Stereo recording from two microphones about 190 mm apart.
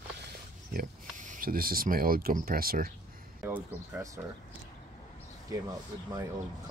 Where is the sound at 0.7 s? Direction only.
40° right (ahead or behind).